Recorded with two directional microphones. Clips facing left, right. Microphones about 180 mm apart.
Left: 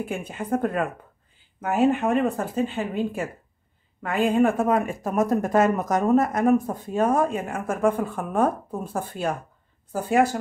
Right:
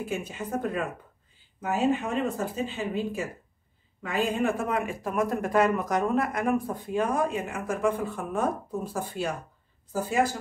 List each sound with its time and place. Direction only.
0.0 s speech: 55° left (ahead or behind)